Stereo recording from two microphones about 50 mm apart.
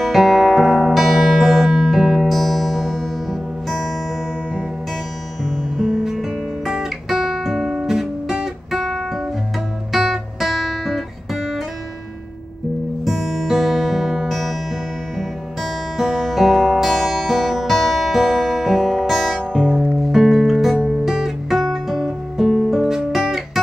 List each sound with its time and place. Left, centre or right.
0.0 s music: centre
5.4 s music: centre
6.0 s guitar: centre
13.0 s music: centre
16.0 s music: centre
20.7 s guitar: centre